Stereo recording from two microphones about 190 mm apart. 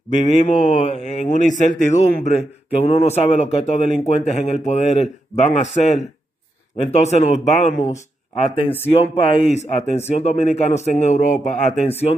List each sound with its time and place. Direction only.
0.2 s speech: 40° left (ahead or behind)